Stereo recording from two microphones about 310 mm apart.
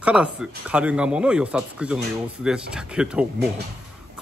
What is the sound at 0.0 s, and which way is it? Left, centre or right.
Speech, centre.